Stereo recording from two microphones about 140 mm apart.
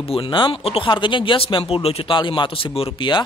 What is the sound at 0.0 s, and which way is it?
Speech, 40° left (ahead or behind).